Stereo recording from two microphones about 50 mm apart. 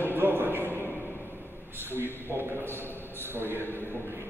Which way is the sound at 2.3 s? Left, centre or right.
Right.